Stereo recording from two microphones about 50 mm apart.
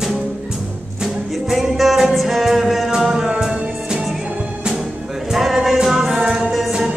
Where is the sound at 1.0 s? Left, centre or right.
Centre.